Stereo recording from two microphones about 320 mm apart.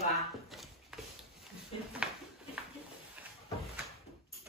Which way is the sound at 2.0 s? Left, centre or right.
Centre.